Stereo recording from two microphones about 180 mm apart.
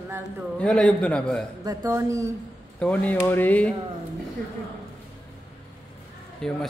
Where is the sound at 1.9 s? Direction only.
15° right (ahead or behind).